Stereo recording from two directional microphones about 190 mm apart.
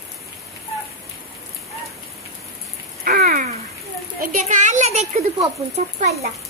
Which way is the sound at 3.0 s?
50° right (ahead or behind).